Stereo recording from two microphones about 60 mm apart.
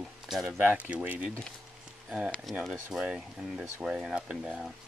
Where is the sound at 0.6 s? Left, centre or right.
Right.